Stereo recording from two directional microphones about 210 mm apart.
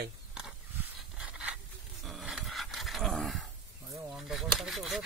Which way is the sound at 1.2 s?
5° right (ahead or behind).